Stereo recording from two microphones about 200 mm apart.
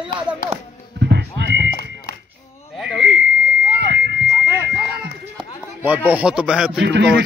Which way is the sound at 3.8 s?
60° right (ahead or behind).